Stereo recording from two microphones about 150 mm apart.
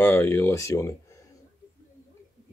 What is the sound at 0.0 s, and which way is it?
Speech, 15° left (ahead or behind).